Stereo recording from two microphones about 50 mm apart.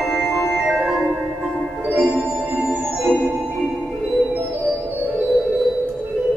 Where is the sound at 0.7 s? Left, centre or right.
Centre.